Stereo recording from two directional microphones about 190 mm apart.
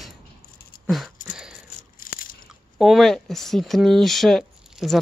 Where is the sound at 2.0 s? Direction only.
50° left (ahead or behind).